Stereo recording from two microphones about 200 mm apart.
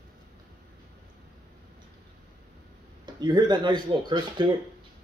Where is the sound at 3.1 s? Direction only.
20° right (ahead or behind).